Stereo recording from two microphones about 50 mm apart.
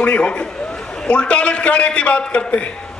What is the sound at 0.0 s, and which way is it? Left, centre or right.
A man's voice, left.